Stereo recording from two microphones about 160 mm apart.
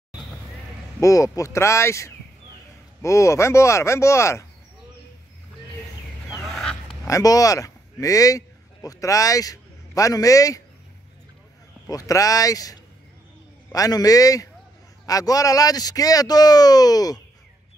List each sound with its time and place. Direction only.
0.9 s speech: 20° left (ahead or behind)
6.4 s honk: 5° left (ahead or behind)
7.1 s speech: 20° left (ahead or behind)
11.9 s speech: 20° left (ahead or behind)